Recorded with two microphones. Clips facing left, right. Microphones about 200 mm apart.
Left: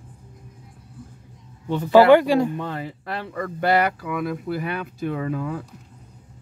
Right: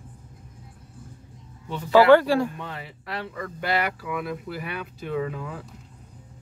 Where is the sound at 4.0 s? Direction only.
55° left (ahead or behind).